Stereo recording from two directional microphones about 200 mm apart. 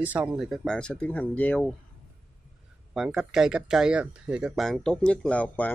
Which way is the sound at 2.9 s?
Centre (ahead or behind).